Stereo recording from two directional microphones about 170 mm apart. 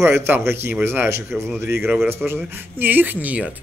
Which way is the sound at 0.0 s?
15° right (ahead or behind).